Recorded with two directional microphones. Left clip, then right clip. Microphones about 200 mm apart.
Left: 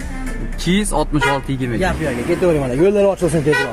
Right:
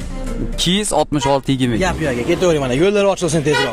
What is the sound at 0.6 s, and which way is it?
Speech, 60° right (ahead or behind).